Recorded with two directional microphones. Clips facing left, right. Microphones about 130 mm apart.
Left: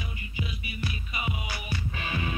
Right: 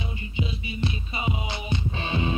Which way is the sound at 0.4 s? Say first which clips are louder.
Right 6 dB; 25° right (ahead or behind).